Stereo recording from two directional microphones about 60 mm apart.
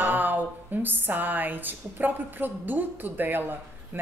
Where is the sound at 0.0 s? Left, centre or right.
Right.